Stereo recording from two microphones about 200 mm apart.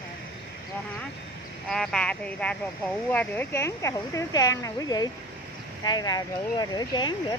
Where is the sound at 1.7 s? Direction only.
5° left (ahead or behind); by 7.1 s 20° left (ahead or behind).